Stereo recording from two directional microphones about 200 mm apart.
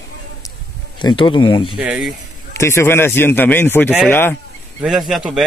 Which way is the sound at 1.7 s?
5° right (ahead or behind).